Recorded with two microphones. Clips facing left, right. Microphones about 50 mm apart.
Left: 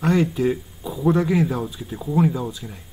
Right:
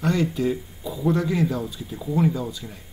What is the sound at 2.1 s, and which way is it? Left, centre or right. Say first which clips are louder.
Speech: left 2 dB; centre.